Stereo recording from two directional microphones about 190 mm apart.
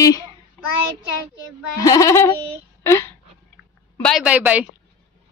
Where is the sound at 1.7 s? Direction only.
15° left (ahead or behind).